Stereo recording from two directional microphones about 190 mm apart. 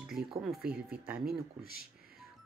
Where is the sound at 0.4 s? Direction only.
Centre (ahead or behind).